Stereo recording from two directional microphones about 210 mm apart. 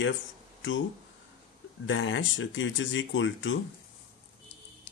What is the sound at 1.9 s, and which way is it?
Speech, 60° left (ahead or behind).